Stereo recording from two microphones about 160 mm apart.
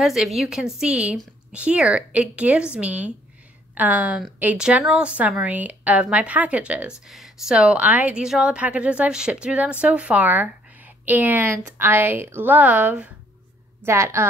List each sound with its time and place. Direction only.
0.0 s a woman's voice: centre (ahead or behind)